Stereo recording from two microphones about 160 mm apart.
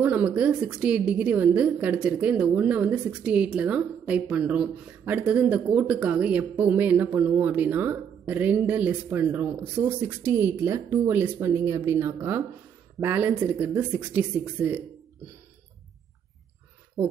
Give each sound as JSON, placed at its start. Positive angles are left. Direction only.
{"t": 0.0, "sound": "a woman's voice", "side_deg": -10}